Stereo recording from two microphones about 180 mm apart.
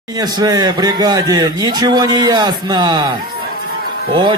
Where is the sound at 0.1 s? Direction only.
20° right (ahead or behind).